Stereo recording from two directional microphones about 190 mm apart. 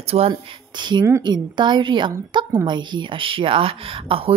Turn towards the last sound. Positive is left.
turn(degrees=-30)  # may be behind; listen again after turning